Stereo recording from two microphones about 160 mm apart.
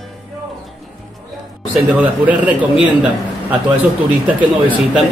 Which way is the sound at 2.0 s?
10° right (ahead or behind).